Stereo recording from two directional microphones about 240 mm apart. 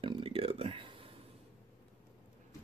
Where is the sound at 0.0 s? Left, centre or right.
Right.